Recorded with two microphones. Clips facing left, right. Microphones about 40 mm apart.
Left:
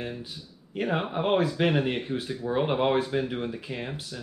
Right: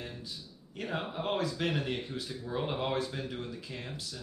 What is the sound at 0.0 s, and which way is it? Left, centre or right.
Speech, left.